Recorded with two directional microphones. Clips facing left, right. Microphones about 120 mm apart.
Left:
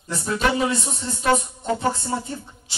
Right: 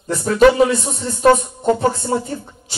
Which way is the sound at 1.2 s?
50° right (ahead or behind).